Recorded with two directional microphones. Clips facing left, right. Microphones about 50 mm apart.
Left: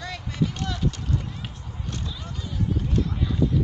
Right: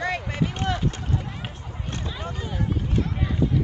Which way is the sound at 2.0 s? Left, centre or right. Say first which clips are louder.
Right 3 dB; right.